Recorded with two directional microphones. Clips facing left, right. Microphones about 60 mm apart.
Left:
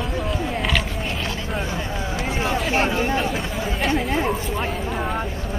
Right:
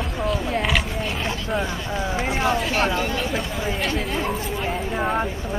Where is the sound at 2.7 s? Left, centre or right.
Left.